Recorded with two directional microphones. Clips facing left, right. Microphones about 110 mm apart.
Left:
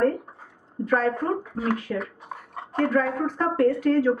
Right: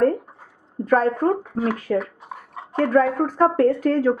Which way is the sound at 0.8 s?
40° right (ahead or behind).